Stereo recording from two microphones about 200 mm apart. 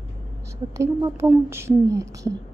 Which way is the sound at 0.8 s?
10° right (ahead or behind).